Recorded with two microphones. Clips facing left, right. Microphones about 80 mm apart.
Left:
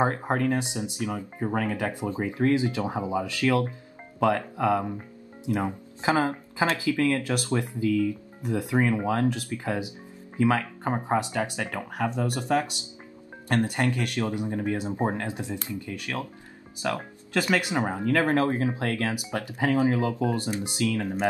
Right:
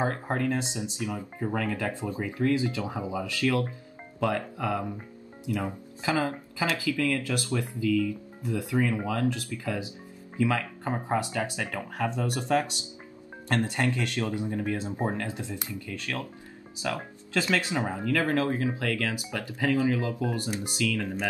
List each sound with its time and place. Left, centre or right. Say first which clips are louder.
0.0 s speech: left 4 dB; left
17.3 s speech: left 2 dB; centre